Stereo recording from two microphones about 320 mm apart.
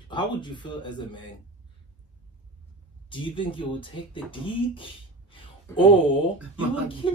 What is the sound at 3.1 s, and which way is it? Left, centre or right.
Speech, centre.